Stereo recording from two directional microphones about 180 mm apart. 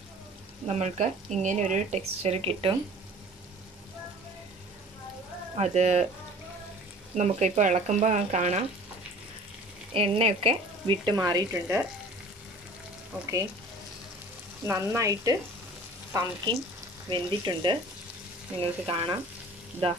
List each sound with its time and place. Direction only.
0.7 s speech: 40° right (ahead or behind)
5.6 s speech: 40° right (ahead or behind)
7.2 s speech: 40° right (ahead or behind)
9.9 s speech: 35° right (ahead or behind)
14.7 s speech: 15° right (ahead or behind)